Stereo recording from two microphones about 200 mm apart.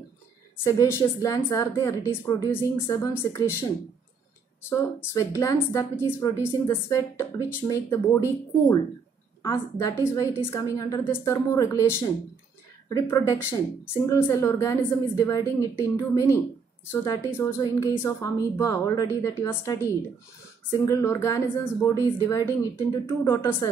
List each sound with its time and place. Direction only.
0.7 s speech: 15° left (ahead or behind)
10.0 s speech: 15° left (ahead or behind)